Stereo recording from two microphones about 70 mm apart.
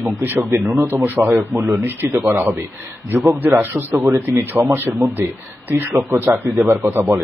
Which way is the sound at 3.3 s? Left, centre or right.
Right.